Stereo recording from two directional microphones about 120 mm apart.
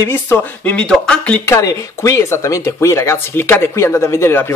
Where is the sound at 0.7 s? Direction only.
5° left (ahead or behind).